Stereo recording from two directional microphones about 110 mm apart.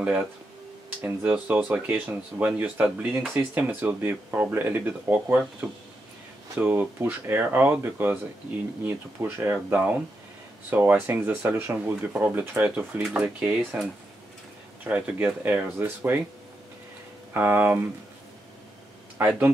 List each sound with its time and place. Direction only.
1.0 s speech: 15° right (ahead or behind)
13.0 s speech: 5° right (ahead or behind)
13.4 s speech: 15° right (ahead or behind)
14.9 s speech: 10° right (ahead or behind)
17.3 s speech: 20° right (ahead or behind)
19.1 s speech: 15° right (ahead or behind)